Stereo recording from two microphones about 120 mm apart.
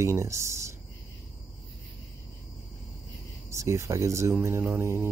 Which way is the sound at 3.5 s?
25° right (ahead or behind).